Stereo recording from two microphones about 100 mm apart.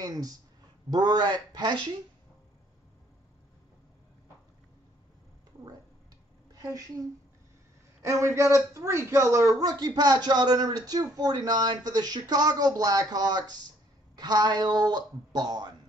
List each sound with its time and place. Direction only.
0.0 s speech: 40° right (ahead or behind)
6.5 s a sound: 40° right (ahead or behind)
8.0 s a man's voice: 30° right (ahead or behind)